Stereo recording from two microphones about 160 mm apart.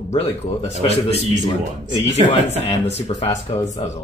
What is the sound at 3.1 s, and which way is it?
Speech, 35° left (ahead or behind).